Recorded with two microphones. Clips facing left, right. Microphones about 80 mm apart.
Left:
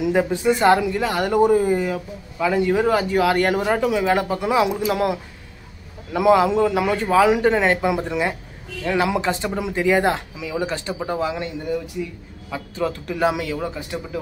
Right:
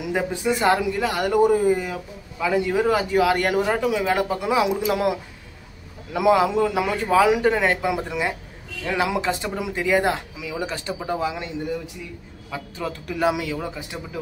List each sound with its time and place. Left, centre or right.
0.3 s speech: centre
12.4 s speech: centre